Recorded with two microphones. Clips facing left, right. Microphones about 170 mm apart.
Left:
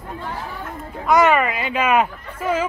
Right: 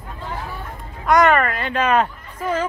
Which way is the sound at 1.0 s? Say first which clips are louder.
Even; 5° left (ahead or behind).